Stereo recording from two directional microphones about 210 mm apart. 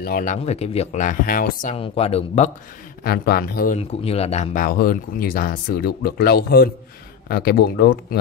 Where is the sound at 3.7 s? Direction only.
30° left (ahead or behind).